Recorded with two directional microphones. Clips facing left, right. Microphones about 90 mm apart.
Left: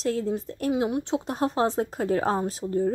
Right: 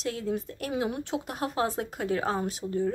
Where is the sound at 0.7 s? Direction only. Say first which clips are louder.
Left 5 dB; 20° left (ahead or behind).